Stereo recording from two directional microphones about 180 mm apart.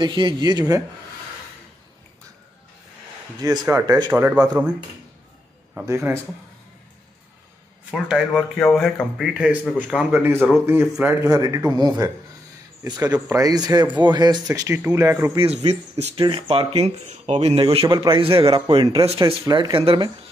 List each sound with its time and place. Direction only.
0.0 s a man's voice: 25° right (ahead or behind)
3.6 s speech: 15° right (ahead or behind)
5.9 s speech: 15° right (ahead or behind)
7.9 s a man's voice: centre (ahead or behind)
11.2 s a man's voice: 20° right (ahead or behind)
12.8 s a man's voice: 25° right (ahead or behind)
15.6 s speech: 35° right (ahead or behind)
17.8 s a man's voice: 25° right (ahead or behind)